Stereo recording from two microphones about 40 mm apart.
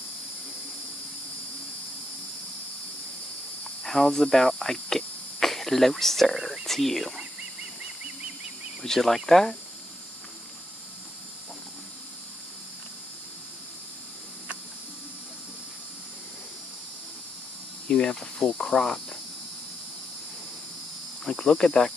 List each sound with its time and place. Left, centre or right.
3.8 s speech: centre
8.8 s speech: centre
17.8 s speech: left
21.2 s speech: centre